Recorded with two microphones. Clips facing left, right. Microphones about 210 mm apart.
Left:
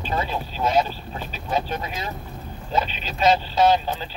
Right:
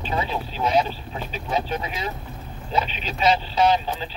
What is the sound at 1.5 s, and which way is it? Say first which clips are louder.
Speech: even; 45° left (ahead or behind).